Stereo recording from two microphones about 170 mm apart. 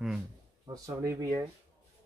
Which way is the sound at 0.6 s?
20° right (ahead or behind).